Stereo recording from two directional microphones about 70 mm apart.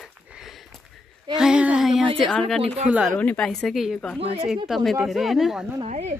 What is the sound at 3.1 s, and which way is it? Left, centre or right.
Speech, left.